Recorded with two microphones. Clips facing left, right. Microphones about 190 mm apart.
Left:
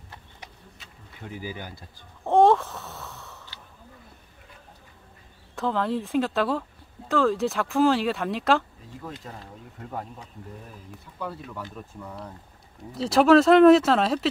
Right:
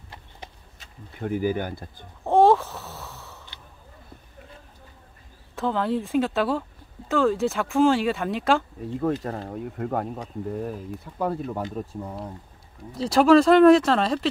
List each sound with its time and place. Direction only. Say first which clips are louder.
1.2 s speech: right 11 dB; 50° right (ahead or behind)
2.2 s a sound: right 1 dB; centre (ahead or behind)
5.6 s speech: right 1 dB; centre (ahead or behind)
9.5 s speech: right 11 dB; 60° right (ahead or behind)
10.2 s speech: right 13 dB; 45° right (ahead or behind)
11.7 s speech: right 7 dB; 30° right (ahead or behind)
12.9 s speech: right 1 dB; centre (ahead or behind)